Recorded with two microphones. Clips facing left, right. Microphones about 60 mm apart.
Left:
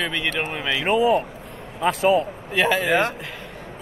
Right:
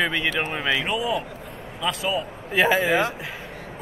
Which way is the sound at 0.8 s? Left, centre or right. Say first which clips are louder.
Left 7 dB; left.